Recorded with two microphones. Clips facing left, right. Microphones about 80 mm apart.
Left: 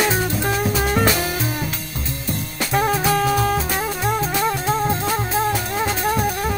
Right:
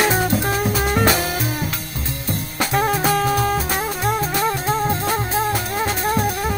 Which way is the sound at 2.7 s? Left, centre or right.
Centre.